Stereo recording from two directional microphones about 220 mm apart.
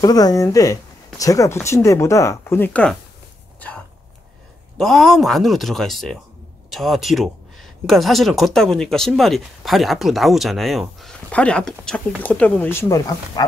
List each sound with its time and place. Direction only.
0.0 s speech: 15° left (ahead or behind)
3.5 s a sound: 5° left (ahead or behind)
4.7 s speech: centre (ahead or behind)